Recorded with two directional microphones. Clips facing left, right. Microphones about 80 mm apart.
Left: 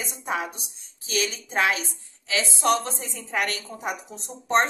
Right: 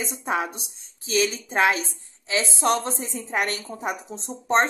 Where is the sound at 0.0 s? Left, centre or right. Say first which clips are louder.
Right 3 dB; right.